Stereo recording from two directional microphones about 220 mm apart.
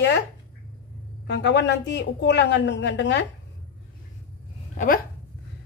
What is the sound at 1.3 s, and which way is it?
Speech, 50° left (ahead or behind).